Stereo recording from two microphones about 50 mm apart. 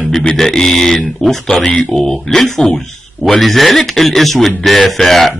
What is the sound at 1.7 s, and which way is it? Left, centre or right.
Speech, left.